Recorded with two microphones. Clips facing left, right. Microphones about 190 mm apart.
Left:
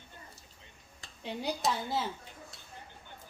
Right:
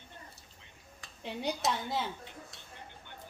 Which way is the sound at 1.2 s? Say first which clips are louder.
Even; centre (ahead or behind).